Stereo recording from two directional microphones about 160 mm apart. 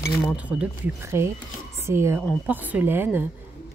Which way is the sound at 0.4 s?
10° right (ahead or behind).